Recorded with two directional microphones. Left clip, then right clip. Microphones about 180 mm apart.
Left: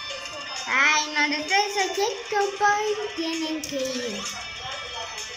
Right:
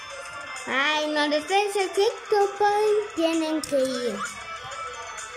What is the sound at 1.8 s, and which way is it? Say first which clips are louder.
Speech: right 1 dB; 20° right (ahead or behind).